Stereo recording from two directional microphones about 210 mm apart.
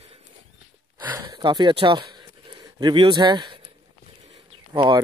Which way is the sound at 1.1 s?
20° right (ahead or behind).